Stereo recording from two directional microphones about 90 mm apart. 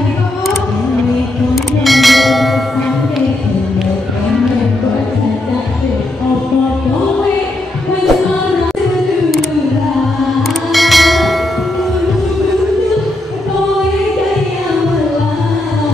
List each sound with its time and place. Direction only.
1.5 s bell: centre (ahead or behind)
10.7 s bell: centre (ahead or behind)